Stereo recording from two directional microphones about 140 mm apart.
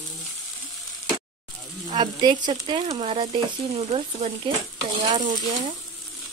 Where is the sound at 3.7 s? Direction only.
45° right (ahead or behind).